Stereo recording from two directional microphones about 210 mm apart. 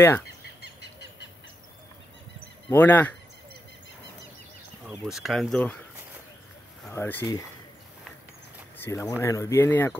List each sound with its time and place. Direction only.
2.7 s speech: 10° left (ahead or behind)
4.8 s speech: centre (ahead or behind)
6.9 s speech: 10° left (ahead or behind)
8.7 s speech: 10° left (ahead or behind)